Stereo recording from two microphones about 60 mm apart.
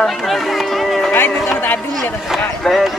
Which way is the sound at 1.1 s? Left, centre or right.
Left.